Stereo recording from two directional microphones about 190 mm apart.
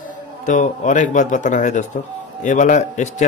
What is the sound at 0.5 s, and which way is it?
Speech, 40° left (ahead or behind).